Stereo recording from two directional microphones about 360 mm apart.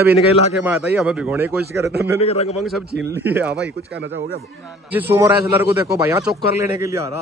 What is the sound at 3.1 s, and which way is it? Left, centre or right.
Speech, centre.